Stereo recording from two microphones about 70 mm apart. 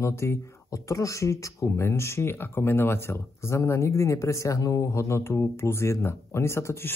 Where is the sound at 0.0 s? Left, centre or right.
Left.